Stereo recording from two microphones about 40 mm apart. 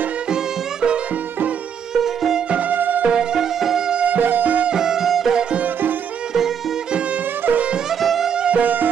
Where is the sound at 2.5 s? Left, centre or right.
Right.